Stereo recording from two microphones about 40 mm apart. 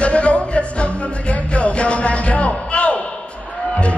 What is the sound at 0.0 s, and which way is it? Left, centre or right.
Music, left.